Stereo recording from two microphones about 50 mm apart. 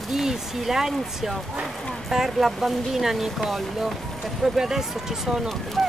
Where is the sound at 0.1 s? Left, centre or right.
Centre.